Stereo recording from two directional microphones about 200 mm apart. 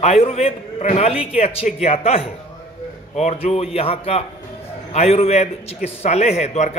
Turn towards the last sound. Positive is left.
turn(degrees=35)  # may be behind; listen again after turning